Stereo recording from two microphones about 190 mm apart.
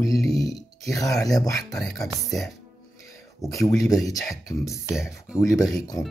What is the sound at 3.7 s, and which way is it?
Speech, 20° left (ahead or behind).